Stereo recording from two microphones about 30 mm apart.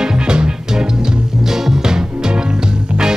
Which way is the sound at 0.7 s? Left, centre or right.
Centre.